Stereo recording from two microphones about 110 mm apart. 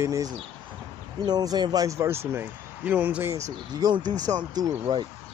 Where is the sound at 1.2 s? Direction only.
35° right (ahead or behind); by 3.3 s 15° right (ahead or behind).